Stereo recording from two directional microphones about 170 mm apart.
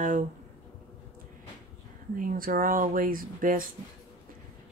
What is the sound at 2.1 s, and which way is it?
Speech, 55° right (ahead or behind).